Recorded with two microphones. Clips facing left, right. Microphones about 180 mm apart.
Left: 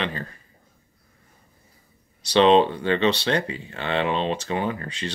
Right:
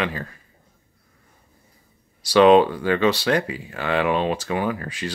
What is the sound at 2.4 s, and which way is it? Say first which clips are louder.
Speech: right 3 dB; 25° left (ahead or behind).